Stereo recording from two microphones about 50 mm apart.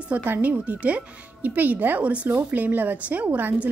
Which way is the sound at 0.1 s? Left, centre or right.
Right.